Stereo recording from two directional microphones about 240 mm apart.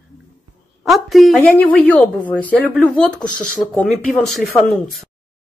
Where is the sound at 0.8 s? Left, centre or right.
Centre.